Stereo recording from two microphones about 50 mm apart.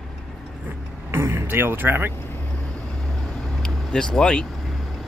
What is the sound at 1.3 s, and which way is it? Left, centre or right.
Speech, right.